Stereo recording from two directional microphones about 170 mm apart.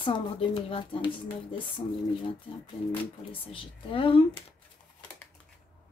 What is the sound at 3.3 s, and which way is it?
Speech, 30° left (ahead or behind).